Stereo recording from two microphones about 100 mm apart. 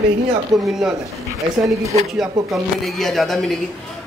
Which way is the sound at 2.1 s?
Centre (ahead or behind).